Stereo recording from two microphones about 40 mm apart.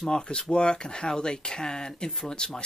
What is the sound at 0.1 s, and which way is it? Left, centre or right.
Speech, centre.